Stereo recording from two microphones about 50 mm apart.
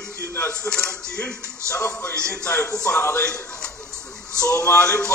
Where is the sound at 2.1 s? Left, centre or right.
Left.